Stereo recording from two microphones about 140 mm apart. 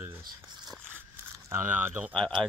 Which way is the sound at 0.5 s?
30° right (ahead or behind).